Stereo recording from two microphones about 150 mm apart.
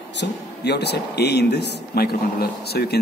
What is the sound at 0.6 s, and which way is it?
Speech, 90° left.